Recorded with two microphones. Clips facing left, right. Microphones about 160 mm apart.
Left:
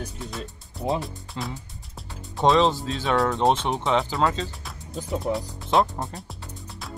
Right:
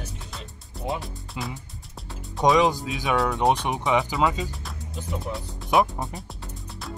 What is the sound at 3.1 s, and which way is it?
Speech, centre (ahead or behind).